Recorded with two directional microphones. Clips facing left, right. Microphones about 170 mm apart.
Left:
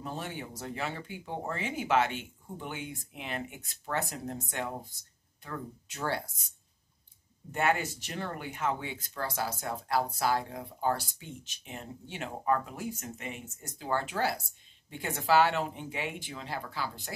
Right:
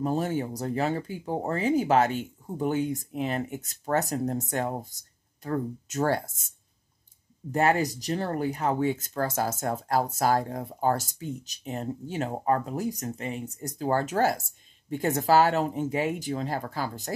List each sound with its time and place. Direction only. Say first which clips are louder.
0.0 s speech: right 11 dB; 40° right (ahead or behind)
7.5 s speech: right 6 dB; 35° right (ahead or behind)